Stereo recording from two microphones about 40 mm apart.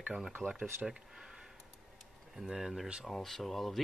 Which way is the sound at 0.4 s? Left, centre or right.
Left.